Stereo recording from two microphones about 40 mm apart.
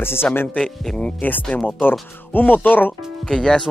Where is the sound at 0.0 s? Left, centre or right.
Left.